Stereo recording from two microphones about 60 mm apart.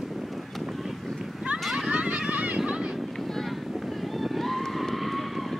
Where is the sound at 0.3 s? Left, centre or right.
Centre.